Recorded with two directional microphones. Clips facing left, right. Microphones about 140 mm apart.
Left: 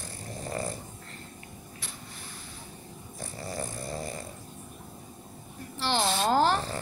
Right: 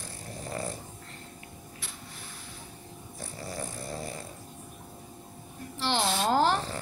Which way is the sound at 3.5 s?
Centre (ahead or behind).